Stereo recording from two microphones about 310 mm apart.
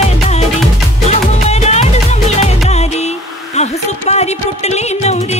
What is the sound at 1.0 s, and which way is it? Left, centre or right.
Music, left.